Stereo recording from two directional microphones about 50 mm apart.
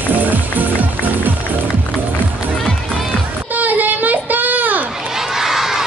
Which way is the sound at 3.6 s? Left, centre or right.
Right.